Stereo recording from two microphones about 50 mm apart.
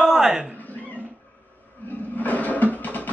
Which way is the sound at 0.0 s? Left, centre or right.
Centre.